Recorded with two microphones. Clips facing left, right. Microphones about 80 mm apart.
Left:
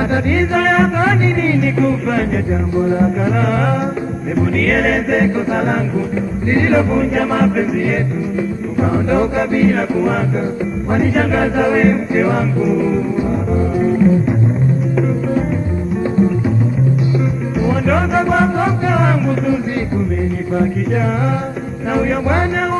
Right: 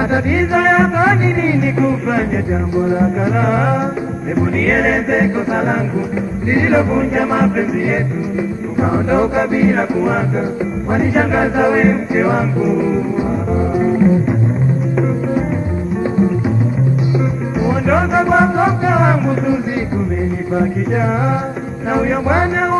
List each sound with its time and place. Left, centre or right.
0.0 s music: centre
0.9 s music: centre
6.9 s music: centre
8.7 s music: centre
9.8 s music: centre
17.8 s music: centre
19.2 s music: centre
20.5 s music: centre